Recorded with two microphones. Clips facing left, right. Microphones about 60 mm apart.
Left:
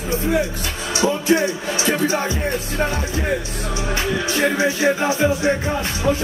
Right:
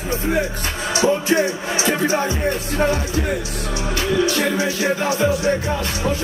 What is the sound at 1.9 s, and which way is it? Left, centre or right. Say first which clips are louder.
Speech: right 1 dB; right.